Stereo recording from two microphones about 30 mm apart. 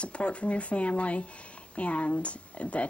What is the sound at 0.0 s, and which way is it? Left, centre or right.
Speech, left.